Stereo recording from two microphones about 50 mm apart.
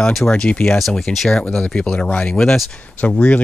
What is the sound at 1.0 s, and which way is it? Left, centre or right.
Speech, centre.